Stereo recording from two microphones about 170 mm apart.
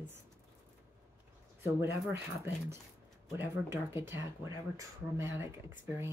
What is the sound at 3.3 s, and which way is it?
Speech, 15° right (ahead or behind).